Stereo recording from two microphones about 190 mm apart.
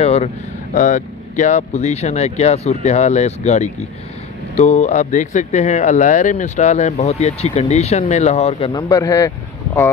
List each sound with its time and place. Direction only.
0.0 s speech: 35° left (ahead or behind); by 9.3 s 15° left (ahead or behind)